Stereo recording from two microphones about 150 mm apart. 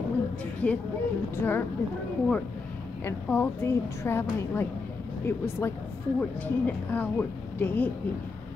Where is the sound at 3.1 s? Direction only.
15° left (ahead or behind).